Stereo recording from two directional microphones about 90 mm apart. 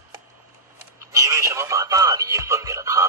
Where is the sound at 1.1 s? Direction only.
35° right (ahead or behind).